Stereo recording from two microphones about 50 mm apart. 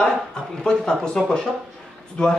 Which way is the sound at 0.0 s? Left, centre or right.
Centre.